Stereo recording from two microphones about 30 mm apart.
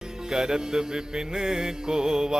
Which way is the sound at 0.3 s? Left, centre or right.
Right.